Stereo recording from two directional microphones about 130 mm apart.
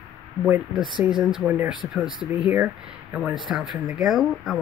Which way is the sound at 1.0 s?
20° right (ahead or behind).